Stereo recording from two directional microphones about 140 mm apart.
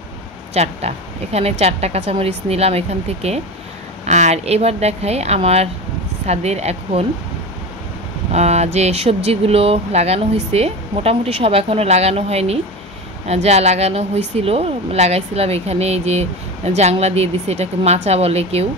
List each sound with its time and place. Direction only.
0.6 s a woman's voice: 50° right (ahead or behind)
8.3 s a woman's voice: 50° right (ahead or behind)